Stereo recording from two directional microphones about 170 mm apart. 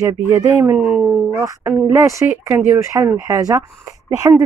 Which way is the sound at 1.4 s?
15° right (ahead or behind).